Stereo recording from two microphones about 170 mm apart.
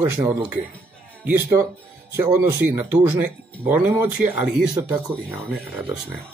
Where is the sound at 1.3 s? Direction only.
15° right (ahead or behind).